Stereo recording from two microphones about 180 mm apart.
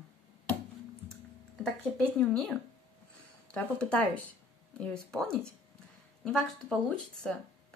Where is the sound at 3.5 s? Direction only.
5° left (ahead or behind).